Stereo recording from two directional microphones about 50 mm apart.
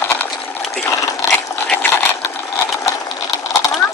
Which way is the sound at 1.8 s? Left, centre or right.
Left.